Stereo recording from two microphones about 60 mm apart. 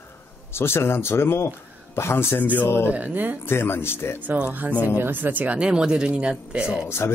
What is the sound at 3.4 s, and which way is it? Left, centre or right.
Speech, left.